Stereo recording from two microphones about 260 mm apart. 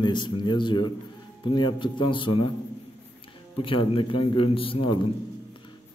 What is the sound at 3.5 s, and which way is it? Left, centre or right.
A man's voice, centre.